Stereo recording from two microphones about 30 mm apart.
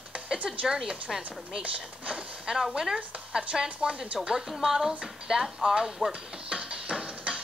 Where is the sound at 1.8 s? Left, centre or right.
Right.